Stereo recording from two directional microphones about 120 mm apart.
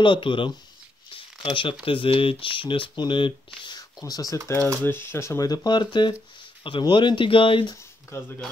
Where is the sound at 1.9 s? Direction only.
50° left (ahead or behind).